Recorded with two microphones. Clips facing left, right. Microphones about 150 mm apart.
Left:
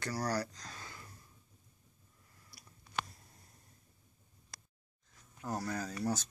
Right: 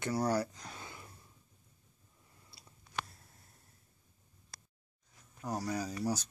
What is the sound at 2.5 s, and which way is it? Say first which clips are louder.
Chewing: left 1 dB; 25° right (ahead or behind).